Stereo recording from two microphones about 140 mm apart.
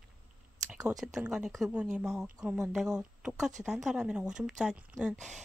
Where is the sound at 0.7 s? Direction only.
20° right (ahead or behind).